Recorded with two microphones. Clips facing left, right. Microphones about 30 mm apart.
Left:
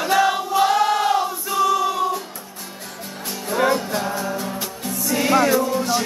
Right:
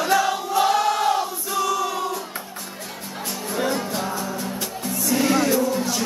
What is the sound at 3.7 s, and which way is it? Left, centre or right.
Music, centre.